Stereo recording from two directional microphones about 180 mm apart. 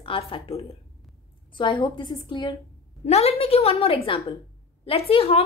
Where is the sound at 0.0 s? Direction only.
30° left (ahead or behind).